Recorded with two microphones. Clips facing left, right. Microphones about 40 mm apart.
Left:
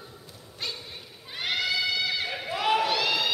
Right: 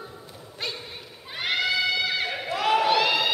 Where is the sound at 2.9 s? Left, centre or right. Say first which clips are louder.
Right 4 dB; centre.